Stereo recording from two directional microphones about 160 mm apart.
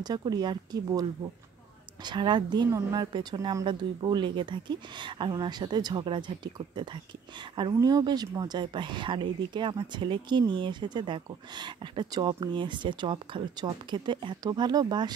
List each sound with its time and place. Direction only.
0.0 s speech: 25° right (ahead or behind)
2.0 s speech: 30° right (ahead or behind)